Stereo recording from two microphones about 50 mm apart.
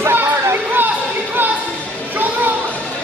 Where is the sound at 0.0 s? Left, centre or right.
Right.